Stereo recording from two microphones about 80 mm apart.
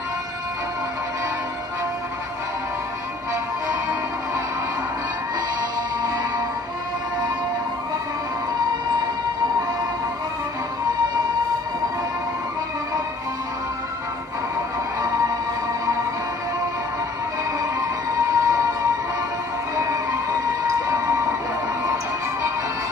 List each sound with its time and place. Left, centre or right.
17.6 s music: right